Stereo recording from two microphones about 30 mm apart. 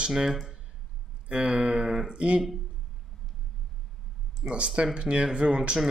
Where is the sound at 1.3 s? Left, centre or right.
Right.